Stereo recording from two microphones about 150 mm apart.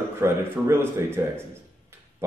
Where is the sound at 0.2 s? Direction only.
15° right (ahead or behind).